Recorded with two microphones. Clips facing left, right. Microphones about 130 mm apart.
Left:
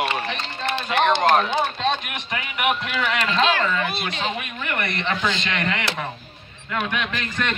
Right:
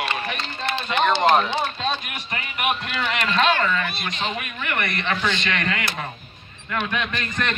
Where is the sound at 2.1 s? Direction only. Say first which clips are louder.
Left 2 dB; 90° left.